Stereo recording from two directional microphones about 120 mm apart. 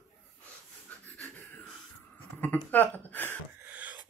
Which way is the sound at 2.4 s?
15° left (ahead or behind).